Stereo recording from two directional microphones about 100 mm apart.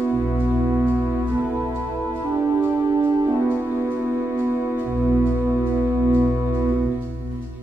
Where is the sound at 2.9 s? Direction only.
30° right (ahead or behind).